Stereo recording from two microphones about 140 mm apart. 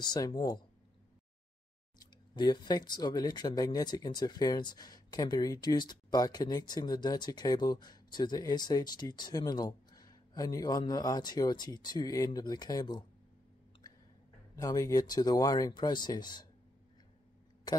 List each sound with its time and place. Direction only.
0.0 s speech: 30° left (ahead or behind)
2.0 s speech: 30° left (ahead or behind)
14.5 s speech: 25° left (ahead or behind)
17.7 s speech: 30° left (ahead or behind)